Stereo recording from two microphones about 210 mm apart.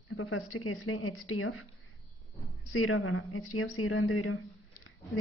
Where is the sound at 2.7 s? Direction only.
80° left.